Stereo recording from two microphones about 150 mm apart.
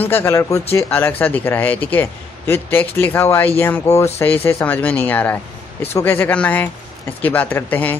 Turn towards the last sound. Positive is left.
turn(degrees=10)  # may be behind; listen again after turning